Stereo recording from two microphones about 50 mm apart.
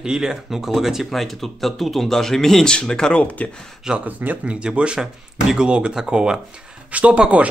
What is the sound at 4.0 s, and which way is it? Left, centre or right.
Speech, right.